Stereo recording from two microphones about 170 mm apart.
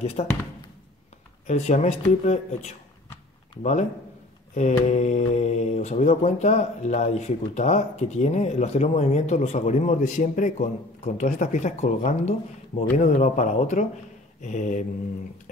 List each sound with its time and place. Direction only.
0.0 s speech: 40° left (ahead or behind)
1.5 s speech: 40° left (ahead or behind)
4.6 s speech: 45° left (ahead or behind)